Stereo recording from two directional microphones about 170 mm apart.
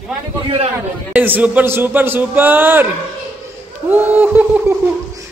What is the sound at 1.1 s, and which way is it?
A man's voice, 10° right (ahead or behind).